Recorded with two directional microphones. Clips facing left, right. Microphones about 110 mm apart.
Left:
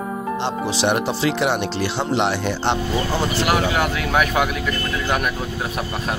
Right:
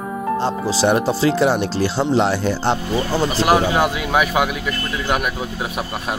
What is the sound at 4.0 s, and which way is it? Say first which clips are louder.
Speech: right 1 dB; 10° right (ahead or behind).